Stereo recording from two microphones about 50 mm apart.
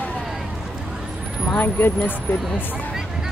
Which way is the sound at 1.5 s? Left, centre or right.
Left.